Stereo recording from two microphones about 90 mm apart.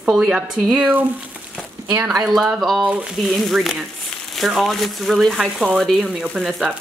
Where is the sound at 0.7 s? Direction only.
20° right (ahead or behind).